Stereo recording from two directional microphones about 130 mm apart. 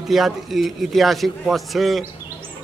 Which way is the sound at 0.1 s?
Centre (ahead or behind).